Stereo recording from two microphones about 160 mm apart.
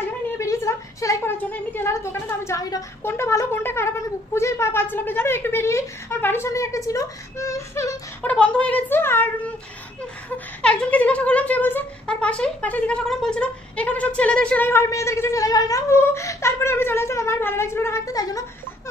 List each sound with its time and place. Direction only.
0.4 s a woman's voice: 20° left (ahead or behind)
10.3 s a woman's voice: 5° left (ahead or behind)